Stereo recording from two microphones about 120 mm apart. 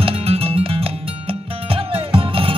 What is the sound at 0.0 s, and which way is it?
Music, 55° right (ahead or behind).